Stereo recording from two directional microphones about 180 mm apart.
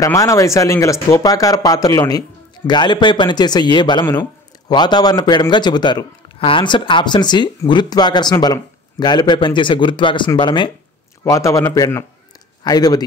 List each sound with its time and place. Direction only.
0.0 s a man's voice: 20° left (ahead or behind)